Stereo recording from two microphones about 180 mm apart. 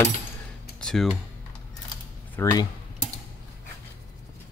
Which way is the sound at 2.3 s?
20° left (ahead or behind).